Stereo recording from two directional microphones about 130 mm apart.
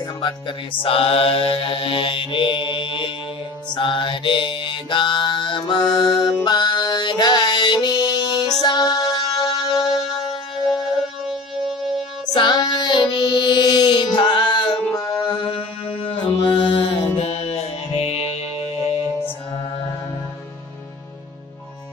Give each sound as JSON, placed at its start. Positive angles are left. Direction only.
{"t": 0.2, "sound": "mantra", "side_deg": 40}
{"t": 8.6, "sound": "music", "side_deg": 30}
{"t": 11.2, "sound": "music", "side_deg": 0}
{"t": 12.4, "sound": "music", "side_deg": 35}
{"t": 15.2, "sound": "mantra", "side_deg": 40}